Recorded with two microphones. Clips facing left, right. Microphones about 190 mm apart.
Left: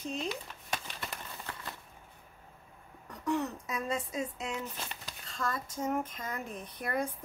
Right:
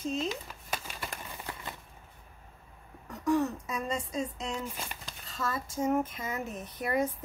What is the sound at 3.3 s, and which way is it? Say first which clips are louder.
A woman's voice: right 4 dB; centre (ahead or behind).